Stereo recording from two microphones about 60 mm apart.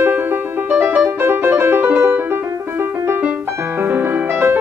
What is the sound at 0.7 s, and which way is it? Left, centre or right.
Music, right.